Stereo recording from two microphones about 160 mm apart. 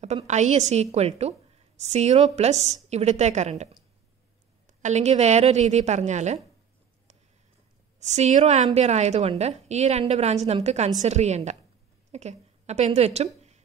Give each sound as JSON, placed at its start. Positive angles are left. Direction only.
{"t": 0.0, "sound": "a woman's voice", "side_deg": -45}
{"t": 8.0, "sound": "a woman's voice", "side_deg": -45}